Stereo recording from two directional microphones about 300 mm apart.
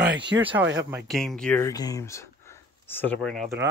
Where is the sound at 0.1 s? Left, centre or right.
Right.